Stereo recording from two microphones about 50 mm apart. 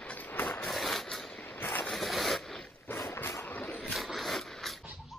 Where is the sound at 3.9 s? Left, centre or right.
Centre.